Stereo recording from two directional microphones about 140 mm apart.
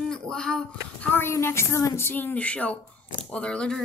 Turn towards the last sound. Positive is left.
turn(degrees=5)  # may be behind; listen again after turning